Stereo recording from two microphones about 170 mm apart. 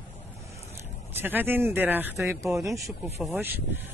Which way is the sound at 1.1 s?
10° right (ahead or behind).